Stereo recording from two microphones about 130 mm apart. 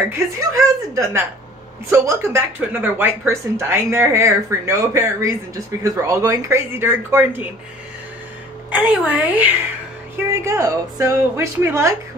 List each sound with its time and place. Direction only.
0.4 s speech: 25° right (ahead or behind)
8.6 s a woman's voice: 10° right (ahead or behind)
10.1 s speech: 20° right (ahead or behind)